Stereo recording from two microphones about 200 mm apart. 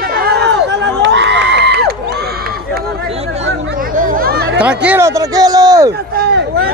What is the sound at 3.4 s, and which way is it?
Chatter, 40° right (ahead or behind).